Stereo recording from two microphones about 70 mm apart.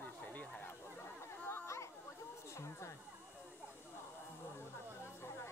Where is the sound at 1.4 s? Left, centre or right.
Left.